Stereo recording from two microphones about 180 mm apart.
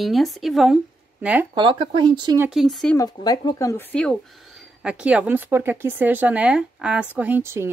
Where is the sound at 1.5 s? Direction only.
30° right (ahead or behind).